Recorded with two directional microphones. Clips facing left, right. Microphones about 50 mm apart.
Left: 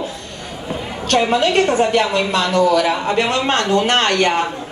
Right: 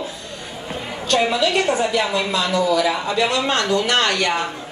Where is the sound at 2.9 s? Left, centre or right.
Left.